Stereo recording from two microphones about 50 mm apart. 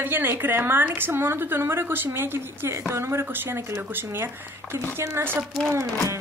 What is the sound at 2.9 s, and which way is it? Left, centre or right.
Speech, right.